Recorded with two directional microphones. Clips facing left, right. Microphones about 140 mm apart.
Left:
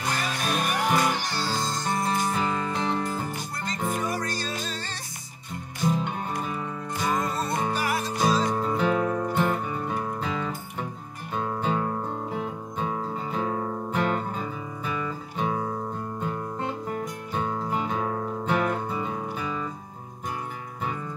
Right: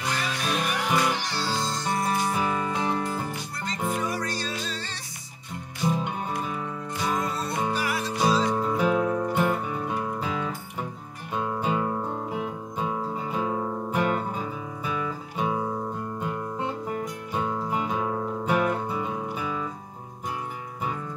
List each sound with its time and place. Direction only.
0.0 s music: 45° left (ahead or behind)
2.3 s music: 10° right (ahead or behind)
3.0 s music: 45° left (ahead or behind)
7.0 s music: 45° left (ahead or behind)
8.5 s music: 5° right (ahead or behind)
17.3 s music: 10° right (ahead or behind)